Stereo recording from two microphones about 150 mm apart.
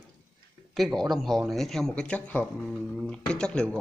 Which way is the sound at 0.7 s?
Centre (ahead or behind).